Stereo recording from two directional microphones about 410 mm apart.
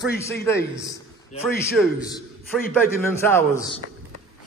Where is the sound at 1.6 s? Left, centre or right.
Centre.